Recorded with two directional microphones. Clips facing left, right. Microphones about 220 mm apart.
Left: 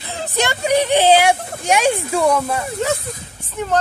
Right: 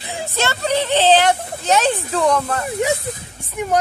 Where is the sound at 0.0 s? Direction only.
15° right (ahead or behind).